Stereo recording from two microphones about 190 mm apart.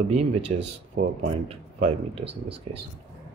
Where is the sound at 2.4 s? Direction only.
65° right (ahead or behind).